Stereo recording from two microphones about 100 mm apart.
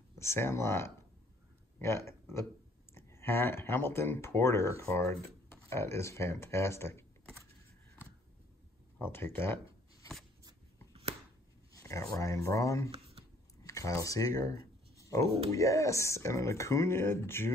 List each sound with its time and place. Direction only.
0.2 s speech: 25° left (ahead or behind)
9.0 s speech: 20° left (ahead or behind)
10.9 s a sound: 85° right
11.8 s speech: 30° left (ahead or behind)